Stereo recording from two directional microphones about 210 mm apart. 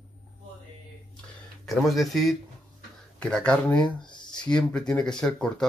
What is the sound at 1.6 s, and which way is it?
Speech, centre (ahead or behind).